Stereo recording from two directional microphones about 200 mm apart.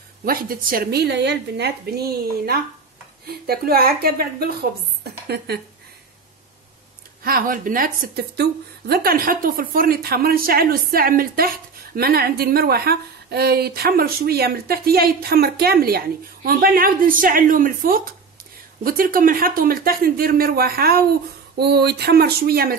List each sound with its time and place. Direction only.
0.2 s a woman's voice: 45° right (ahead or behind)
7.2 s a woman's voice: 45° right (ahead or behind)